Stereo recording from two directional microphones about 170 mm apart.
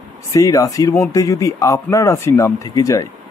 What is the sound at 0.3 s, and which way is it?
Speech, 20° left (ahead or behind).